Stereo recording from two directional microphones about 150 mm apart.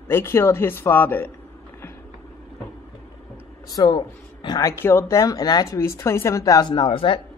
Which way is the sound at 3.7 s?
30° left (ahead or behind).